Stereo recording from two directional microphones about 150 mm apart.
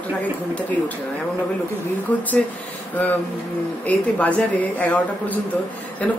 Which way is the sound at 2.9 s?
10° left (ahead or behind).